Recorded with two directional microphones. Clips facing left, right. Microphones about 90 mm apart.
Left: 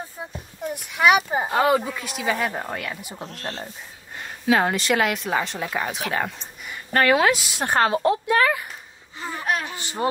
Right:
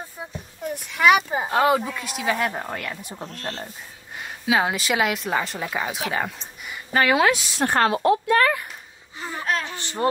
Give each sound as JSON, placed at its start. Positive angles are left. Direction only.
{"t": 0.9, "sound": "speech", "side_deg": 15}
{"t": 1.3, "sound": "speech", "side_deg": 0}
{"t": 3.3, "sound": "a woman's voice", "side_deg": 20}
{"t": 4.2, "sound": "speech", "side_deg": -5}
{"t": 7.5, "sound": "a woman's voice", "side_deg": 20}
{"t": 8.3, "sound": "speech", "side_deg": 5}
{"t": 9.4, "sound": "a sound", "side_deg": 20}
{"t": 9.8, "sound": "a woman's voice", "side_deg": 10}